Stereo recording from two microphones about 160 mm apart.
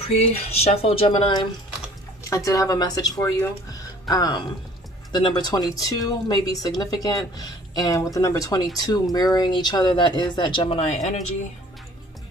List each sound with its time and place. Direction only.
0.0 s speech: 40° left (ahead or behind)